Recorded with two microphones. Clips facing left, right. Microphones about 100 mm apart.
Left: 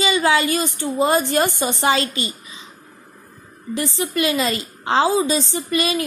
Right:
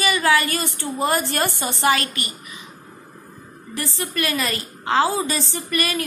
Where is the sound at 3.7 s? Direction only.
20° left (ahead or behind).